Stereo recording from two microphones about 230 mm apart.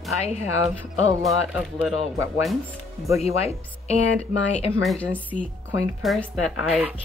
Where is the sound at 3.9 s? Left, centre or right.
Left.